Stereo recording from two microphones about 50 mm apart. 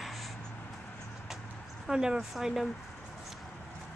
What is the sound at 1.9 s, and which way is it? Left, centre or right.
Speech, centre.